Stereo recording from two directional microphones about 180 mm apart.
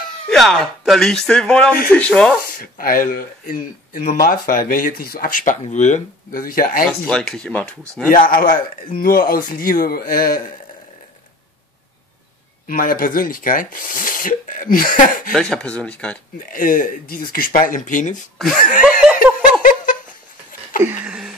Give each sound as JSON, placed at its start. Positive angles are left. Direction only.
{"t": 0.3, "sound": "speech", "side_deg": 0}
{"t": 2.5, "sound": "speech", "side_deg": 50}
{"t": 7.1, "sound": "speech", "side_deg": 5}
{"t": 8.1, "sound": "speech", "side_deg": 50}
{"t": 12.6, "sound": "speech", "side_deg": 50}
{"t": 15.3, "sound": "speech", "side_deg": 5}
{"t": 16.3, "sound": "speech", "side_deg": 50}
{"t": 19.6, "sound": "a sound", "side_deg": 45}
{"t": 20.8, "sound": "a sound", "side_deg": -5}